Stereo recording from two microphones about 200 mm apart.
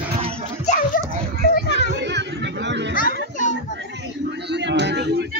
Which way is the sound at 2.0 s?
60° right (ahead or behind).